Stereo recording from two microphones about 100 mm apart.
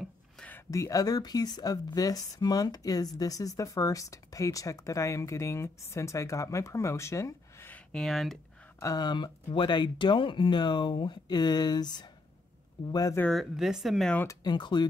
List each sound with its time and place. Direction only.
0.7 s speech: 35° left (ahead or behind)
7.7 s speech: 5° left (ahead or behind)
8.7 s speech: 40° left (ahead or behind)
13.3 s speech: centre (ahead or behind)
14.4 s speech: 50° left (ahead or behind)